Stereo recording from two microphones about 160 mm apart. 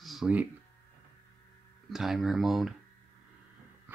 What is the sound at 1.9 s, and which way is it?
Speech, centre (ahead or behind).